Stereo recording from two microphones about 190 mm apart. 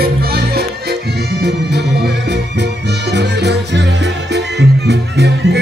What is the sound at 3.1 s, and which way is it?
Music, 65° right (ahead or behind).